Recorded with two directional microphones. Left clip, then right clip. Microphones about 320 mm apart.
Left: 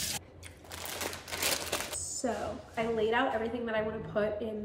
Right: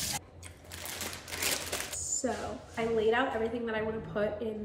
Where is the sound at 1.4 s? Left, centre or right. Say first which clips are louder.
Left 1 dB; centre.